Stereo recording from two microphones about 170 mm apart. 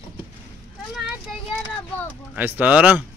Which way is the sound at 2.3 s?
10° right (ahead or behind).